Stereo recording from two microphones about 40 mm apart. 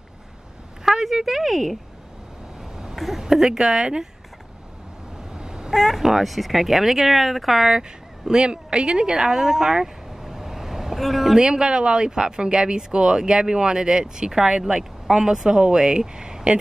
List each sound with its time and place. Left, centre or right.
0.8 s speech: centre
2.7 s a sound: centre
3.2 s speech: centre
5.3 s cat: centre
5.7 s speech: centre
8.3 s speech: right; by 9.8 s centre
9.8 s vehicle: centre
11.3 s speech: right